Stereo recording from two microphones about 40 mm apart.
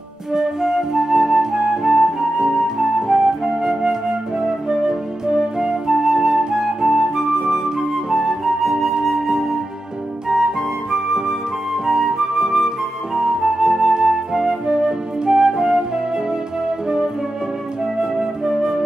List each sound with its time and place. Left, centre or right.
0.3 s flute: centre
9.1 s music: centre
11.2 s flute: centre
16.3 s music: centre
17.9 s flute: centre